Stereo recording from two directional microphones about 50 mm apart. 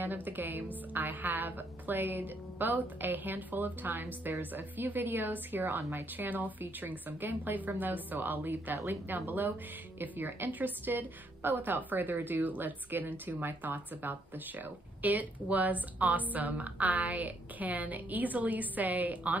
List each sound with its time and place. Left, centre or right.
0.0 s a woman's voice: right
5.7 s a woman's voice: right
6.1 s a woman's voice: right